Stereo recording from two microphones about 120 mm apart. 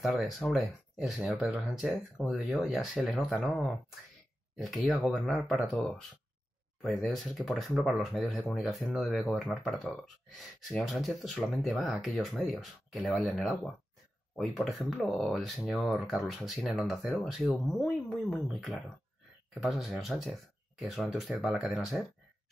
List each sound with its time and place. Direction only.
0.0 s speech: centre (ahead or behind)
4.7 s speech: 10° right (ahead or behind)
5.0 s speech: centre (ahead or behind)
7.0 s speech: 5° left (ahead or behind)